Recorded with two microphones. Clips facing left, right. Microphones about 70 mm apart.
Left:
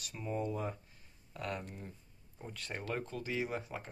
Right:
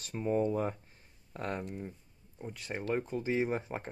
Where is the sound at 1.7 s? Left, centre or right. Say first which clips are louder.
Right 7 dB; centre.